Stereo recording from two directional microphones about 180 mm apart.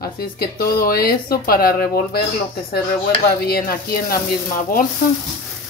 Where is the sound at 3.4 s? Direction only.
55° left (ahead or behind).